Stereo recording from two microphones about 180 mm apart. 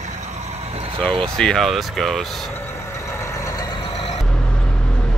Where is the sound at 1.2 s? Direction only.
5° left (ahead or behind).